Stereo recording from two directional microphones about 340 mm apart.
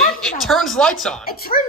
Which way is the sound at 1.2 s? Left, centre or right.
Left.